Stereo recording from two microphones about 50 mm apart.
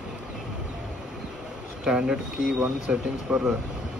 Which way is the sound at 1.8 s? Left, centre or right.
Centre.